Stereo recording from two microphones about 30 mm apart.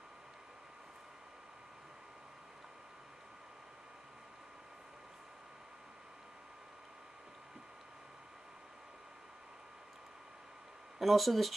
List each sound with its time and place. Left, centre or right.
11.0 s speech: centre